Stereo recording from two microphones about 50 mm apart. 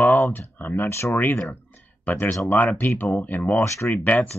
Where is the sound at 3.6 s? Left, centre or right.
Left.